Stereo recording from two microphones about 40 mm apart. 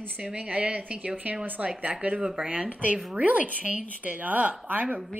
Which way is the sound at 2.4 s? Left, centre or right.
Right.